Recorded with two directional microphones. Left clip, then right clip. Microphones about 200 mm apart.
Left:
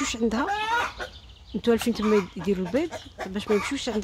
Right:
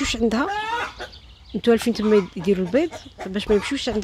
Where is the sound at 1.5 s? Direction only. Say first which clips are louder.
Right 5 dB; 10° right (ahead or behind).